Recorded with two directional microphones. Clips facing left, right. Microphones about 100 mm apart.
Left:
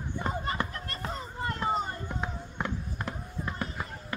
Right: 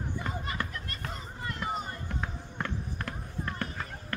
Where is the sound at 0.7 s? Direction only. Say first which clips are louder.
Left 3 dB; 35° left (ahead or behind).